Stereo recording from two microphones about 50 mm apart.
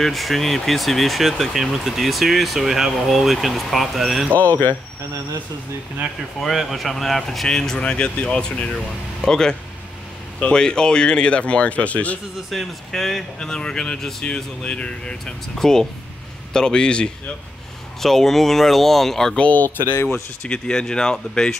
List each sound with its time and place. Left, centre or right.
0.0 s speech: centre
4.4 s speech: left
6.4 s speech: centre; by 12.2 s left
12.4 s speech: centre
15.5 s speech: centre
18.0 s speech: centre
19.3 s speech: left